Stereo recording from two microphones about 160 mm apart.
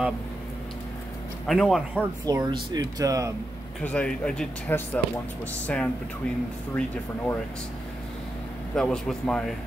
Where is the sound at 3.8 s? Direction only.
5° left (ahead or behind).